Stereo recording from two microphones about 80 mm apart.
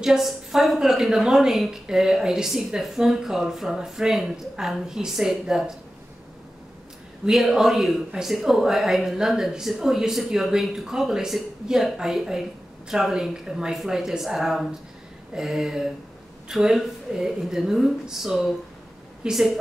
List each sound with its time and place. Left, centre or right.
0.0 s a woman's voice: centre
7.2 s a woman's voice: centre